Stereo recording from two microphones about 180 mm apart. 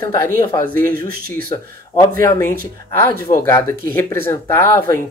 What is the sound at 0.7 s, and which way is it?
Speech, 55° right (ahead or behind).